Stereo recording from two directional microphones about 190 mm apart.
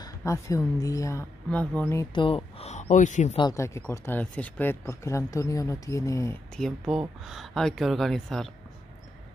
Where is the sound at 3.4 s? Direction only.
20° left (ahead or behind).